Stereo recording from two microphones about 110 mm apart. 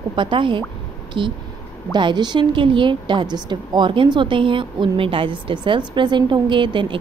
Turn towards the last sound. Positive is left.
turn(degrees=-50)  # may be behind; listen again after turning